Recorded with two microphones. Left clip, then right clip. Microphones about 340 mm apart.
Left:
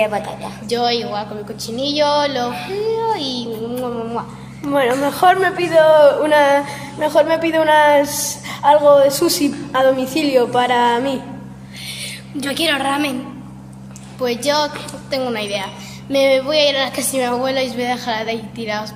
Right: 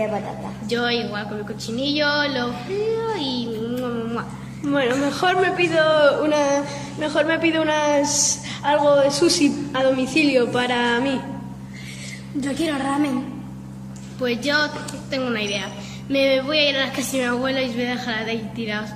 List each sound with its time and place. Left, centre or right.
0.7 s a woman's voice: centre
3.1 s a sound: centre
4.7 s speech: centre
12.4 s a woman's voice: left
14.2 s a woman's voice: centre